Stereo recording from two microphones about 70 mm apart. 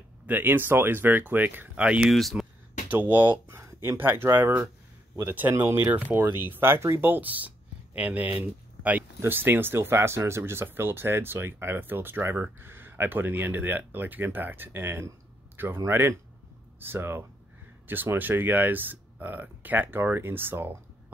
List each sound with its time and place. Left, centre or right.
0.3 s speech: right
2.0 s speech: centre
2.9 s speech: right
3.4 s speech: right
5.5 s speech: right
5.8 s speech: right